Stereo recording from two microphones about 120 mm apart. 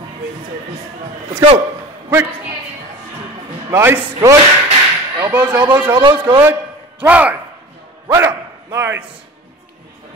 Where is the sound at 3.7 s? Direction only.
20° right (ahead or behind).